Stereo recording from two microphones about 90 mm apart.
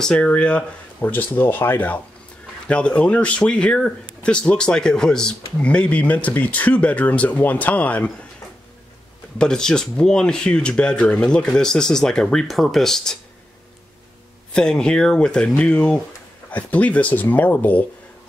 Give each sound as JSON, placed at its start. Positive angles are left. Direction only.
{"t": 0.0, "sound": "speech", "side_deg": 10}
{"t": 9.4, "sound": "speech", "side_deg": 5}
{"t": 14.5, "sound": "speech", "side_deg": 10}